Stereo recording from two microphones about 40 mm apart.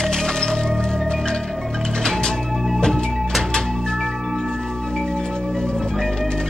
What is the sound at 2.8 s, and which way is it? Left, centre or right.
Music, centre.